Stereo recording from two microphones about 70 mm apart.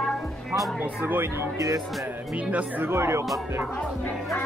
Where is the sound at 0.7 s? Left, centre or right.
Right.